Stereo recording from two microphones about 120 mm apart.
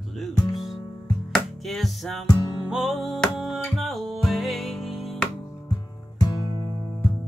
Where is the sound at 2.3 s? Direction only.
35° left (ahead or behind).